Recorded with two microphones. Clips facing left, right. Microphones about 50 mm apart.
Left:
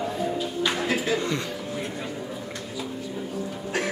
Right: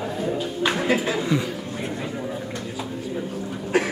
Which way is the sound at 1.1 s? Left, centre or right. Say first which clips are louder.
Right 4 dB; centre.